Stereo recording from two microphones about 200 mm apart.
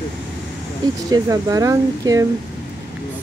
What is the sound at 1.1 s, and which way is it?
Speech, 15° right (ahead or behind).